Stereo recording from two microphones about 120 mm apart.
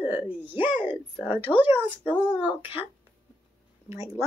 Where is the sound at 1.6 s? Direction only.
15° right (ahead or behind).